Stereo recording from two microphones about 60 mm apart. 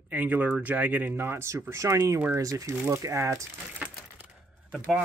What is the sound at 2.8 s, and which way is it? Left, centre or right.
Speech, right.